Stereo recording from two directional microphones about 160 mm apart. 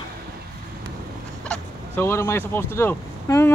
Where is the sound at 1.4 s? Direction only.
15° left (ahead or behind).